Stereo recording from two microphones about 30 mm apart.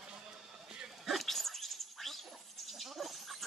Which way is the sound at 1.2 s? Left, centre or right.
Centre.